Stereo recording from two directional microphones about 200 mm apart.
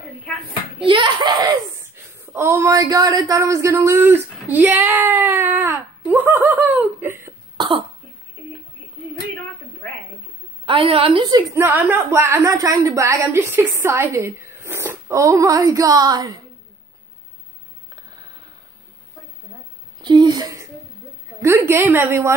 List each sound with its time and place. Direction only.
0.8 s a child's voice: 25° right (ahead or behind)
1.8 s speech: 10° right (ahead or behind)
4.4 s baby cry: 10° right (ahead or behind)
10.6 s a woman's voice: 25° right (ahead or behind)
20.0 s a woman's voice: 20° right (ahead or behind)